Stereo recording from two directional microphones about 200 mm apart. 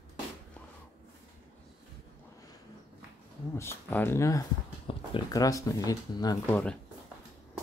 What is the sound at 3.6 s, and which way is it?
Speech, 10° left (ahead or behind).